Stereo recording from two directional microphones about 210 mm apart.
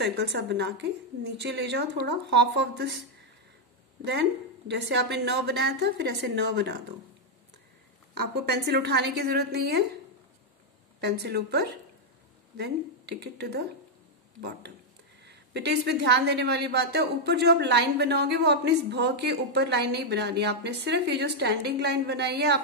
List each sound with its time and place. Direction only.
0.0 s a woman's voice: 55° right (ahead or behind)
8.4 s a woman's voice: 50° right (ahead or behind)
11.0 s a woman's voice: 50° right (ahead or behind)
15.2 s a woman's voice: 50° right (ahead or behind)